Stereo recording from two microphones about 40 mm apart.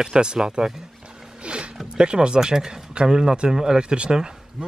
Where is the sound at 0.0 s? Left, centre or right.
Right.